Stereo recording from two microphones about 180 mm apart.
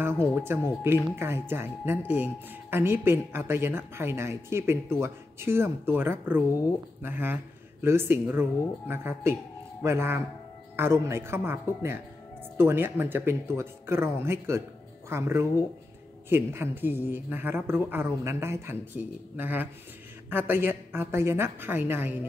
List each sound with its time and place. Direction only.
0.5 s speech: 10° right (ahead or behind)